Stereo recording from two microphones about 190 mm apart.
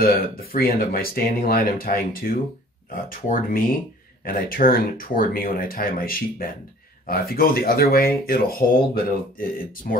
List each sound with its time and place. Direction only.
0.0 s speech: 50° left (ahead or behind)